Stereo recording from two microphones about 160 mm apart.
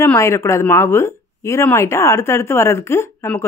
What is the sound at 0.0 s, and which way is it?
Speech, 15° left (ahead or behind).